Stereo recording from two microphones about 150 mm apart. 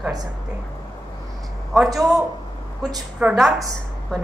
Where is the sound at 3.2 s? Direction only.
5° right (ahead or behind).